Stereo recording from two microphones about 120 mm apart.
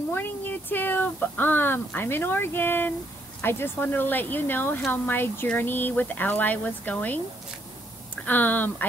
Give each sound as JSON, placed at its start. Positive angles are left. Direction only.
{"t": 0.1, "sound": "speech", "side_deg": 15}
{"t": 8.3, "sound": "speech", "side_deg": 15}